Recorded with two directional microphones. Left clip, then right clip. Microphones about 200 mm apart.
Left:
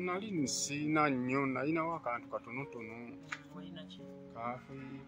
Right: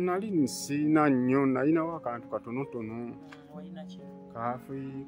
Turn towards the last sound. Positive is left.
turn(degrees=-55)  # may be behind; listen again after turning